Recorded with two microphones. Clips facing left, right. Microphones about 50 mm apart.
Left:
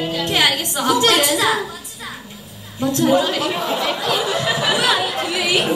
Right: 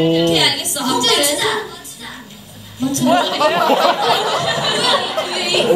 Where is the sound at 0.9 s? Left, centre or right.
Left.